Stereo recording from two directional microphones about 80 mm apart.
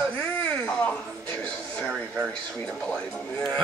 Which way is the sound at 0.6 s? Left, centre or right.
Centre.